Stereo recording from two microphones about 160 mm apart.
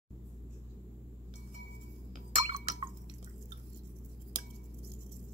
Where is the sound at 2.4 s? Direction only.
45° right (ahead or behind).